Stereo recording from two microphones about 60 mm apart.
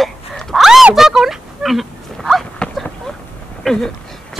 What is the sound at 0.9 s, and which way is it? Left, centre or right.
Oink, centre.